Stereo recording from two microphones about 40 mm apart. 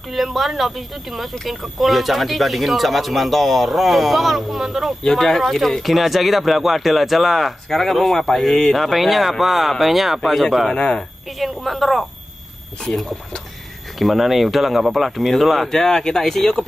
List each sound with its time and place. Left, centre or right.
0.1 s speech: centre
5.0 s speech: centre
10.7 s speech: left
11.3 s speech: centre
15.7 s speech: centre